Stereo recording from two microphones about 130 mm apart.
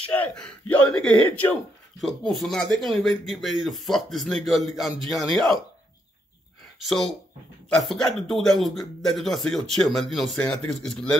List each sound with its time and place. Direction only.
0.0 s speech: 10° left (ahead or behind)
2.0 s speech: centre (ahead or behind)
6.8 s speech: centre (ahead or behind)